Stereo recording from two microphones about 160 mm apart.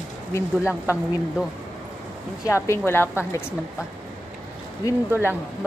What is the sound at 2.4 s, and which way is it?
A woman's voice, 15° left (ahead or behind).